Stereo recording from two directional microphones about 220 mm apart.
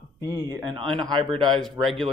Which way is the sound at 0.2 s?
15° right (ahead or behind).